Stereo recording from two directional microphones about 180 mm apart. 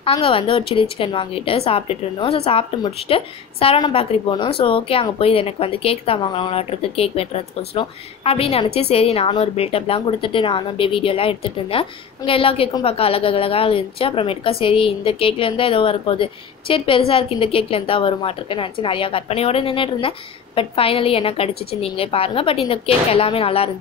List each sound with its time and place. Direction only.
0.0 s a woman's voice: 30° left (ahead or behind)